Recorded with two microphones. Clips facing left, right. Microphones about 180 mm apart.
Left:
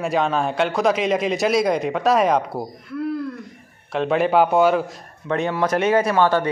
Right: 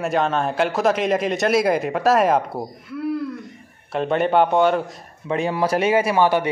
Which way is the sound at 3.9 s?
Centre (ahead or behind).